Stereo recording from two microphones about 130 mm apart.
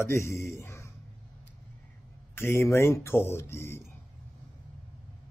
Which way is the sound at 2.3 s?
20° left (ahead or behind).